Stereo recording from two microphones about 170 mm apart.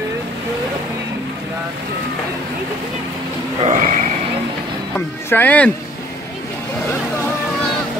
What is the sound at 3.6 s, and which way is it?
Neigh, 45° right (ahead or behind).